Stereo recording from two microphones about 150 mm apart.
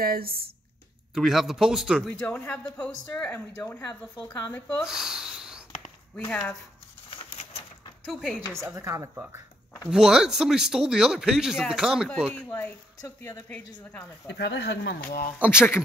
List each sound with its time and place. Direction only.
0.0 s speech: 90° right
1.1 s speech: centre (ahead or behind)
2.0 s speech: 10° left (ahead or behind)
4.8 s a sound: 5° right (ahead or behind)
6.1 s speech: 15° left (ahead or behind)
7.2 s a sound: 35° left (ahead or behind)
8.1 s speech: 5° left (ahead or behind)
8.7 s speech: 20° right (ahead or behind)
9.8 s speech: 5° right (ahead or behind)
12.4 s speech: 15° left (ahead or behind)
14.3 s speech: 90° left; by 15.3 s 70° left (ahead or behind)